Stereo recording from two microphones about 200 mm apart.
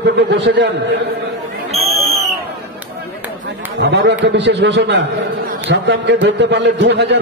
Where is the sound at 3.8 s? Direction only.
60° right (ahead or behind).